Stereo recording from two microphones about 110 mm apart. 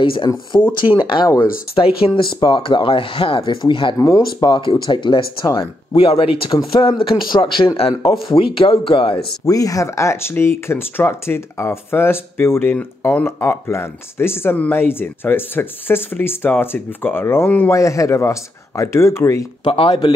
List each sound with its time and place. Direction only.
0.0 s speech: 50° left (ahead or behind)
0.5 s speech: 40° left (ahead or behind)
1.8 s speech: 55° left (ahead or behind)
4.0 s speech: 35° left (ahead or behind)
5.9 s speech: 60° left (ahead or behind)
9.5 s speech: 30° left (ahead or behind)
19.6 s speech: 55° left (ahead or behind)